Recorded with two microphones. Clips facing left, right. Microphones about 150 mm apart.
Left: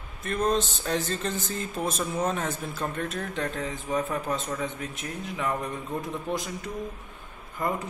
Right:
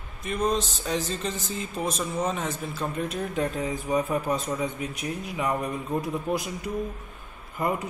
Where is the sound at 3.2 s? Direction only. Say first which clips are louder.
Right 3 dB; 15° right (ahead or behind).